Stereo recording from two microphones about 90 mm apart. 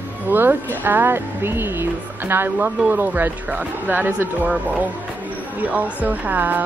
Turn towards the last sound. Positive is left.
turn(degrees=-20)  # may be behind; listen again after turning